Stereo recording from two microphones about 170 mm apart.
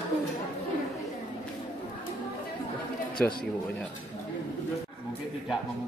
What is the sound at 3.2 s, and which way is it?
Speech, 10° left (ahead or behind).